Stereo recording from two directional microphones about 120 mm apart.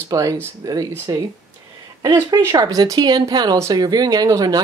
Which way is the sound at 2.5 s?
35° right (ahead or behind).